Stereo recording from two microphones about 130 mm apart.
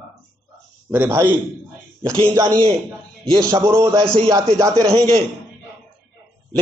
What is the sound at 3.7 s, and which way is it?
Speech, 20° right (ahead or behind).